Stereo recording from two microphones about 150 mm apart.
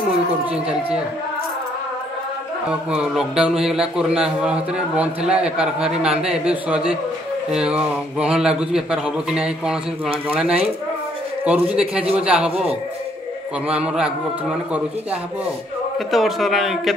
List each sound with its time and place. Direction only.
2.7 s a man's voice: 5° right (ahead or behind)
12.4 s speech: 40° right (ahead or behind)
13.7 s a man's voice: 5° right (ahead or behind)
16.1 s a man's voice: centre (ahead or behind)